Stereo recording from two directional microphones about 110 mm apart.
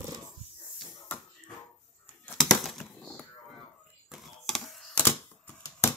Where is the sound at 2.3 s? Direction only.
Centre (ahead or behind).